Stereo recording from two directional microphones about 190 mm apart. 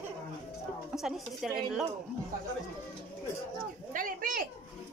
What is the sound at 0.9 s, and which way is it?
Speech, centre (ahead or behind).